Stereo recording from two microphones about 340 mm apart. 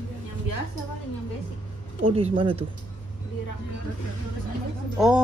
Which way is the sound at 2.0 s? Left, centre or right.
Centre.